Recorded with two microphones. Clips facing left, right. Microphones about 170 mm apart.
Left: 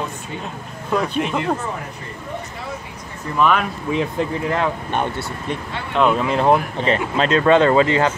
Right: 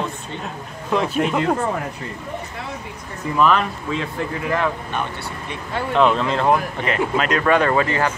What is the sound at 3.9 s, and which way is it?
Speech, 20° left (ahead or behind).